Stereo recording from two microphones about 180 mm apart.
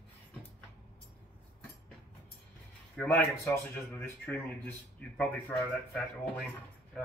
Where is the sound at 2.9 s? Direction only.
5° left (ahead or behind).